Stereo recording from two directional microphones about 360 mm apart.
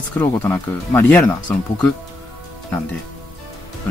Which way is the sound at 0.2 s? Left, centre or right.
Centre.